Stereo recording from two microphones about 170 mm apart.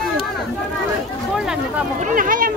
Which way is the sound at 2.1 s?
55° right (ahead or behind).